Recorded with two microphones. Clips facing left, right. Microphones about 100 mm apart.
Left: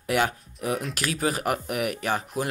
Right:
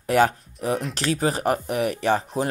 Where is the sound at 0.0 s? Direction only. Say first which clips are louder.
Right 5 dB; 35° right (ahead or behind).